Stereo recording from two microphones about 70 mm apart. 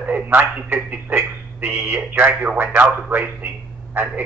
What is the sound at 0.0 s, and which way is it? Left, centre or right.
A man's voice, right.